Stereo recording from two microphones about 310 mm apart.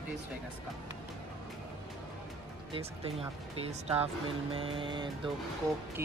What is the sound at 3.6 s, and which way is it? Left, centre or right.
Speech, centre.